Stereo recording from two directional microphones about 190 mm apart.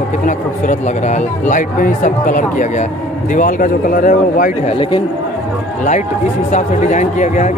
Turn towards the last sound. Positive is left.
turn(degrees=40)  # may be behind; listen again after turning